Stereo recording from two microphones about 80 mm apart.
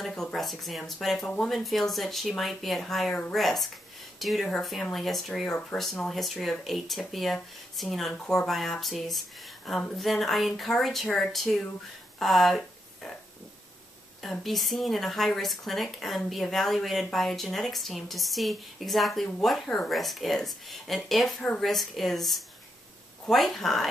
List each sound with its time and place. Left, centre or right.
0.0 s speech: centre
1.2 s speech: centre
1.5 s speech: centre
14.4 s speech: centre